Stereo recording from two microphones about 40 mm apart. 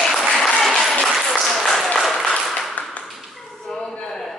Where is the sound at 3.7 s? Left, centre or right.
Centre.